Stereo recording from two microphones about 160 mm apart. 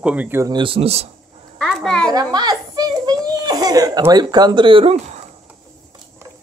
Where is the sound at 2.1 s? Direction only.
25° right (ahead or behind); by 5.2 s 40° right (ahead or behind).